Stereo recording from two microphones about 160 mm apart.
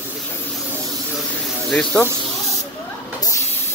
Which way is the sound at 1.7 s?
5° left (ahead or behind).